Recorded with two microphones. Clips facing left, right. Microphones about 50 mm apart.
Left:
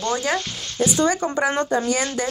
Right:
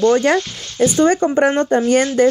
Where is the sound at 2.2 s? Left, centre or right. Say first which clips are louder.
Right 12 dB; right.